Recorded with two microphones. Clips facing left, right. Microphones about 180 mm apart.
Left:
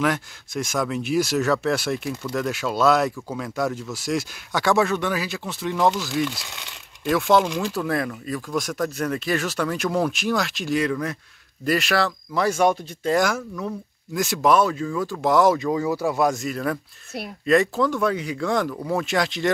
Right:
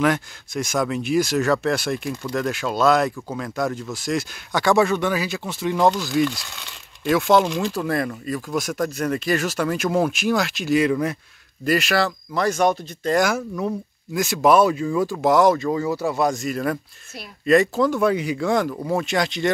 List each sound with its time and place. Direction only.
0.0 s speech: centre (ahead or behind)
7.4 s speech: 10° left (ahead or behind)
8.3 s speech: 5° right (ahead or behind)
15.6 s speech: 10° left (ahead or behind)